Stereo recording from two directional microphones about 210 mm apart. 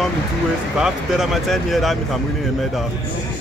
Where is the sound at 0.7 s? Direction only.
Centre (ahead or behind).